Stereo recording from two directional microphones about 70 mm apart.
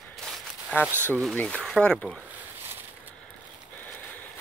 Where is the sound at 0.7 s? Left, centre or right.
Left.